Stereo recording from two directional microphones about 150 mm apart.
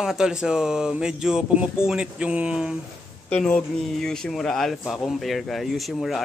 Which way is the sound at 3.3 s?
10° left (ahead or behind).